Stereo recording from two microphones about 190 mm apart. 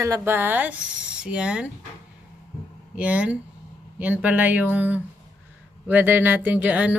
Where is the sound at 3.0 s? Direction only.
5° right (ahead or behind).